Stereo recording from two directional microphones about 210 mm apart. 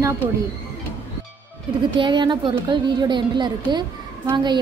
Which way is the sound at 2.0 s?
20° right (ahead or behind).